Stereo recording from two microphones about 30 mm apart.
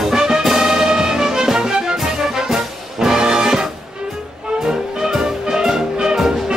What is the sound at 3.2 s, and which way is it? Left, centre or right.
Brass instrument, right.